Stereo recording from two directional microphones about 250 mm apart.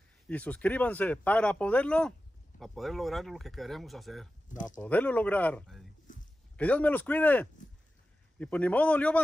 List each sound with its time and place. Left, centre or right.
0.3 s speech: centre
6.1 s a sound: left
6.5 s speech: centre